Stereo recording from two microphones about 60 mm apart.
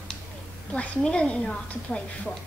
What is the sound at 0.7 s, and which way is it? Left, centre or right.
A woman's voice, centre.